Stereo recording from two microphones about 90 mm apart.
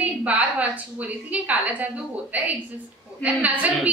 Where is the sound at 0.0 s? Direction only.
15° right (ahead or behind).